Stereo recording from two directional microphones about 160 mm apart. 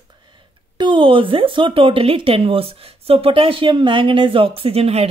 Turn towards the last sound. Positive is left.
turn(degrees=-40)  # may be behind; listen again after turning